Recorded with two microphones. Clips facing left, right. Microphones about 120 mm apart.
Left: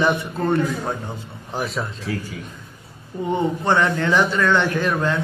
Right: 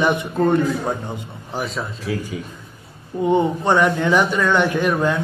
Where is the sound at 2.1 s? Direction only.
5° right (ahead or behind).